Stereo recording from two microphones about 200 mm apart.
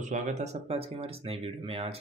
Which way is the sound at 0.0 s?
35° right (ahead or behind).